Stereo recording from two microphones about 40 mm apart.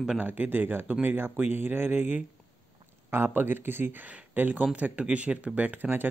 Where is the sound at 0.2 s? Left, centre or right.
Right.